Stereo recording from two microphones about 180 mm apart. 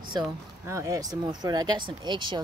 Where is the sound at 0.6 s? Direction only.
15° right (ahead or behind).